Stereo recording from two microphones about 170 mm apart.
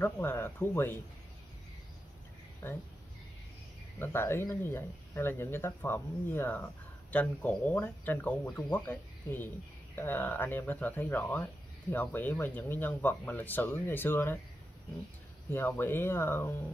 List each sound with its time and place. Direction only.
0.0 s speech: 15° left (ahead or behind)
2.6 s speech: 15° left (ahead or behind)
4.0 s speech: 15° left (ahead or behind)
15.5 s speech: 10° left (ahead or behind)